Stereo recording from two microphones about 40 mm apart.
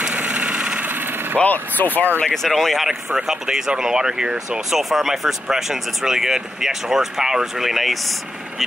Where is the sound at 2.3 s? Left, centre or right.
Centre.